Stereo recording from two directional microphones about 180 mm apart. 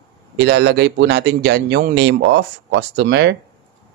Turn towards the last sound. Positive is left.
turn(degrees=-75)  # may be behind; listen again after turning